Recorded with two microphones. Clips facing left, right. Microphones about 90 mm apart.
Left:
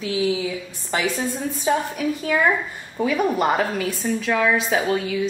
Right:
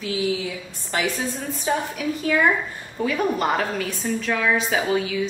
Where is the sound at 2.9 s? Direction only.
5° left (ahead or behind).